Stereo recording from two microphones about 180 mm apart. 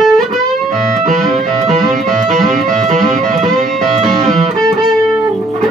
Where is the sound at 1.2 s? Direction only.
Centre (ahead or behind).